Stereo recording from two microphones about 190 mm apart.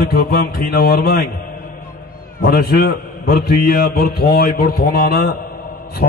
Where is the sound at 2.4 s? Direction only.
55° left (ahead or behind).